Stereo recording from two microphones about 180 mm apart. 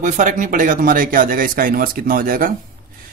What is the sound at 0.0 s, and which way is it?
Speech, 45° right (ahead or behind).